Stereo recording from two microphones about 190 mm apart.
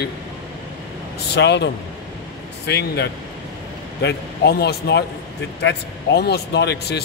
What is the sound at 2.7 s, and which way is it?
A man's voice, 60° left (ahead or behind).